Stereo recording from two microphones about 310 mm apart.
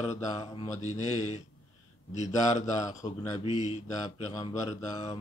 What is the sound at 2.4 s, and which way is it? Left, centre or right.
Speech, left.